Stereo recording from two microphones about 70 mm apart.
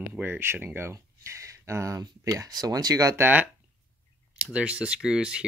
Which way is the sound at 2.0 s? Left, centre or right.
Right.